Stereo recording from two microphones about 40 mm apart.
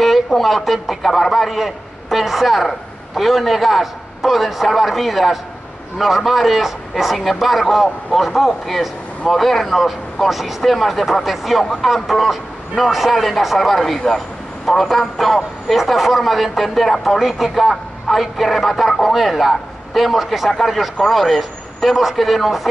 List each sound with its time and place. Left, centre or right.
0.0 s a man's voice: centre